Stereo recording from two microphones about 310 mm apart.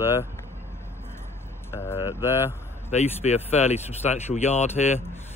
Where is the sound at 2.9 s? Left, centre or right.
Left.